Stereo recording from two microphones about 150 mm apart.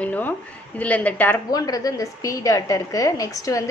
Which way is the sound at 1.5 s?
25° left (ahead or behind).